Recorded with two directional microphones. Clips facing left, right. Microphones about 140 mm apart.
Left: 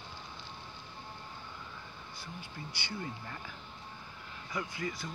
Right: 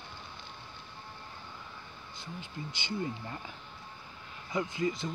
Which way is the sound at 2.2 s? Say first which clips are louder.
Right 4 dB; 20° right (ahead or behind).